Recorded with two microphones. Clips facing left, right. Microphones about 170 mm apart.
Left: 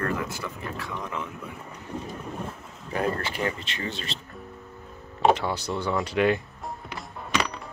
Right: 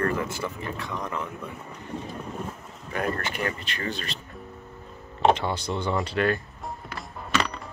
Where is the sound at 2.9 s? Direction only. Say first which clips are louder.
Left 1 dB; 30° left (ahead or behind).